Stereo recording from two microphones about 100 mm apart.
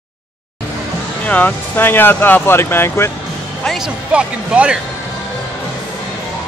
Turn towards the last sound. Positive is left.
turn(degrees=-10)  # may be behind; listen again after turning